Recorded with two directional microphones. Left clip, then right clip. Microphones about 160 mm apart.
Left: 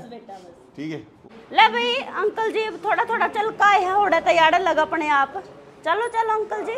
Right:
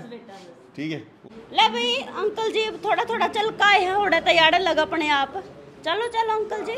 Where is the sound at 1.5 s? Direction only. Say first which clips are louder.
Left 3 dB; 20° left (ahead or behind).